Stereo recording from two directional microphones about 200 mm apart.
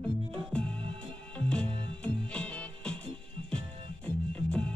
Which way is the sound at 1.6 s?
25° right (ahead or behind).